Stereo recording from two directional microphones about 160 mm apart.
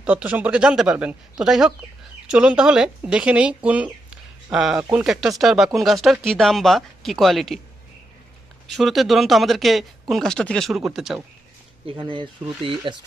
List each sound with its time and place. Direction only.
0.0 s speech: 10° right (ahead or behind)
8.6 s speech: centre (ahead or behind)
11.8 s speech: 30° right (ahead or behind)